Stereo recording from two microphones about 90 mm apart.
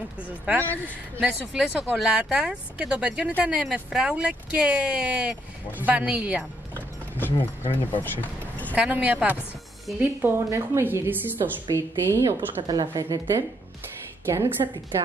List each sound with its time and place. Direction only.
1.2 s speech: 5° right (ahead or behind)
7.2 s speech: 20° left (ahead or behind)
8.0 s a sound: 20° left (ahead or behind)
8.7 s a woman's voice: 15° right (ahead or behind)
11.7 s a woman's voice: 30° right (ahead or behind)
12.4 s a woman's voice: 50° right (ahead or behind)
14.2 s a woman's voice: 30° right (ahead or behind)